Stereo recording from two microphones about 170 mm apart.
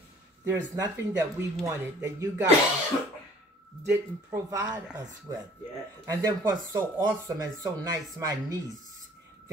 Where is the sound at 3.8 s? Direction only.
15° right (ahead or behind).